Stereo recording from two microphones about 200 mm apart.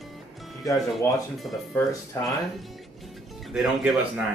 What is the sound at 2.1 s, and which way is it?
Speech, 15° left (ahead or behind).